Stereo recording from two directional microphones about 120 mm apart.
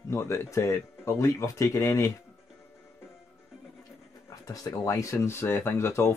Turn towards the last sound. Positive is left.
turn(degrees=20)  # may be behind; listen again after turning